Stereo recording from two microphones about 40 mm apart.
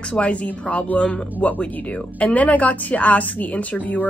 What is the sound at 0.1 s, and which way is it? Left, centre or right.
Speech, left.